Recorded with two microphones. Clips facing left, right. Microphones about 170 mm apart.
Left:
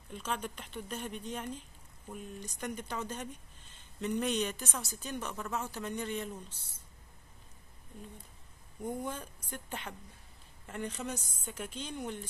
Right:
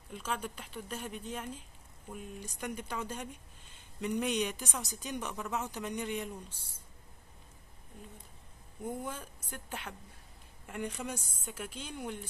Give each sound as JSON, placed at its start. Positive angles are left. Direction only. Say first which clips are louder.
{"t": 0.1, "sound": "a woman's voice", "louder": "even", "side_deg": -10}
{"t": 8.8, "sound": "a woman's voice", "louder": "left 1 dB", "side_deg": -10}